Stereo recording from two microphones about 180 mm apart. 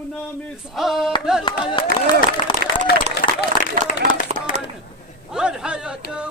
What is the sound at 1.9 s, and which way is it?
Speech, 65° right (ahead or behind).